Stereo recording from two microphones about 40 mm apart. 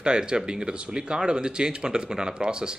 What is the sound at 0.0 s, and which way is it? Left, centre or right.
A man's voice, right.